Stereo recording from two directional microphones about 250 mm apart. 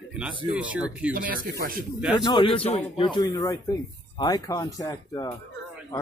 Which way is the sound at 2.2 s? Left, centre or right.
Centre.